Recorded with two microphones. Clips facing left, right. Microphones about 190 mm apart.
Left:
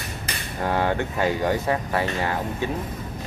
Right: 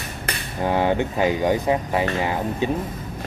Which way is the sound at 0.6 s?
15° right (ahead or behind).